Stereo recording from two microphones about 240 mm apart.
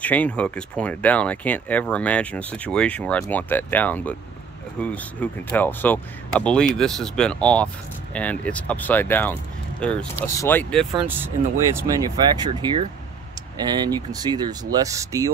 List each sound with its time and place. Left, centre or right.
0.0 s speech: centre
11.1 s speech: centre